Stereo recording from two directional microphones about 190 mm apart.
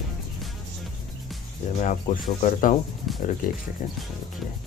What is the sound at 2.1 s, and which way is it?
Speech, 40° left (ahead or behind).